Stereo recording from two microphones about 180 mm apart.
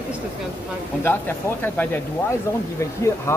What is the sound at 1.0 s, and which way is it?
A woman's voice, 10° left (ahead or behind).